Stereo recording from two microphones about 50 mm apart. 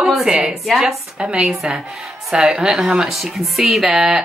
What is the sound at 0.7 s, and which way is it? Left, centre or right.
A woman's voice, centre.